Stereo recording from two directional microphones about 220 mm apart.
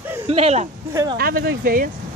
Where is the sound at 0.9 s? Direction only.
15° right (ahead or behind).